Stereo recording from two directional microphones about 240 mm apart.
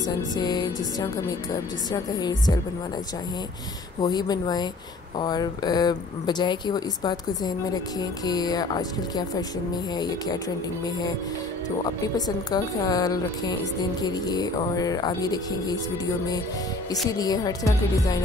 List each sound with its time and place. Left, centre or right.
0.4 s speech: centre
4.0 s speech: centre
11.8 s speech: centre
17.1 s speech: centre